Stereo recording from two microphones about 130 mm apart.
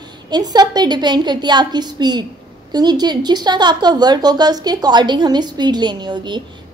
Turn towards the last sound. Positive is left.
turn(degrees=-35)  # may be behind; listen again after turning